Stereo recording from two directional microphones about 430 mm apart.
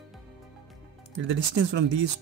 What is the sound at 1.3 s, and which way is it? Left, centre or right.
Speech, right.